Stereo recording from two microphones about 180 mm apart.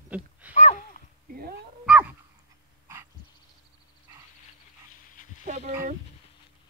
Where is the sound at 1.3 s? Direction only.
55° right (ahead or behind).